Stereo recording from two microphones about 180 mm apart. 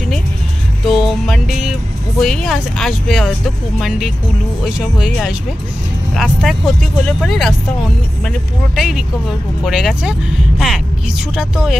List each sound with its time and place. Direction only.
0.8 s music: centre (ahead or behind)
2.1 s speech: centre (ahead or behind)